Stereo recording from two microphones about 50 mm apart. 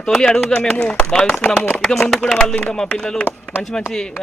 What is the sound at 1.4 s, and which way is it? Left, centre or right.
Speech, left.